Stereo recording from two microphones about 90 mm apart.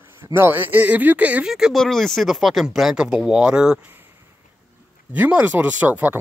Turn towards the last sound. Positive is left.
turn(degrees=-15)  # may be behind; listen again after turning